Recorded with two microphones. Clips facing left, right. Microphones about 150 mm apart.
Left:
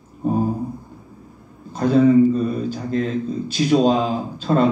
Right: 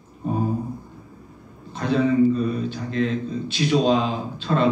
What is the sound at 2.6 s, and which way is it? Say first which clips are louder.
A man's voice: left 2 dB; 40° left (ahead or behind).